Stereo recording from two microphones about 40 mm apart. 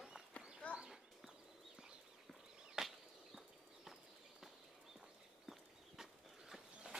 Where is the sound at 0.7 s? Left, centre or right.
Centre.